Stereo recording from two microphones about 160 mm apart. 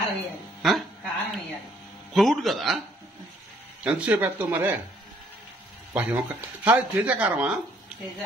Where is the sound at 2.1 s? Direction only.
Centre (ahead or behind).